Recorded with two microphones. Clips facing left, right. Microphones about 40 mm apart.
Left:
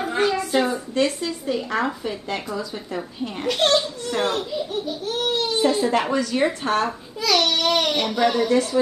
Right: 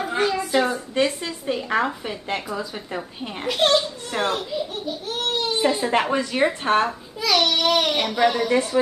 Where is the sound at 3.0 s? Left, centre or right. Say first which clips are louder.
Left 3 dB; centre; by 6.9 s right.